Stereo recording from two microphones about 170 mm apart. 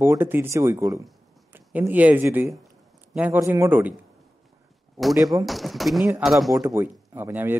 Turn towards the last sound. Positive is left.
turn(degrees=-15)  # may be behind; listen again after turning